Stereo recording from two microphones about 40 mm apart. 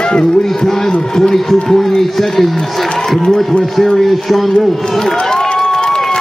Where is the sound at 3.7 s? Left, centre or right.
Centre.